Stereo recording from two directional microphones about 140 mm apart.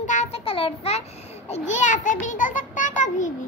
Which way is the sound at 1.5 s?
60° left (ahead or behind).